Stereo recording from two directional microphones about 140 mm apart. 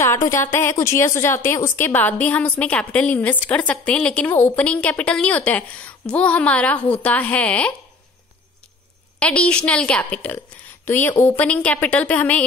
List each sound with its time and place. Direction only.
0.0 s a sound: 20° left (ahead or behind)
0.5 s a woman's voice: 20° left (ahead or behind)
9.2 s a woman's voice: 10° left (ahead or behind)